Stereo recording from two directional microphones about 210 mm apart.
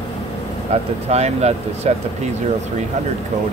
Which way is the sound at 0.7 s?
30° right (ahead or behind).